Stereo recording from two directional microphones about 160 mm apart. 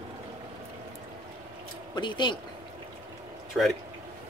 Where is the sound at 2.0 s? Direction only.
30° left (ahead or behind).